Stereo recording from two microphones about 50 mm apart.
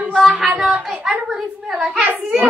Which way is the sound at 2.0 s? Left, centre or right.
Right.